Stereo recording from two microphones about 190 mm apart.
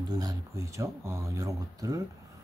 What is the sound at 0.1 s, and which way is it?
Speech, 20° right (ahead or behind).